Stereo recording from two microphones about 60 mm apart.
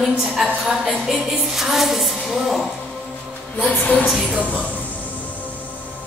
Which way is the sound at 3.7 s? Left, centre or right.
Left.